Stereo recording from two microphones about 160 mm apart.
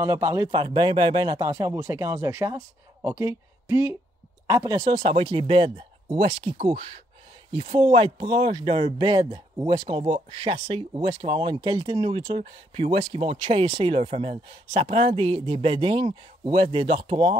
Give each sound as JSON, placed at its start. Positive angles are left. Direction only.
{"t": 0.0, "sound": "speech", "side_deg": -20}